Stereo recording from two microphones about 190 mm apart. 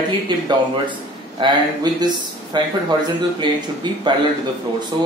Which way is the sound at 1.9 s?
20° right (ahead or behind).